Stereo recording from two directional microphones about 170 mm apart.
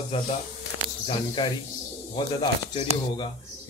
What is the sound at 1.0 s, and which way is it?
A man's voice, 30° left (ahead or behind).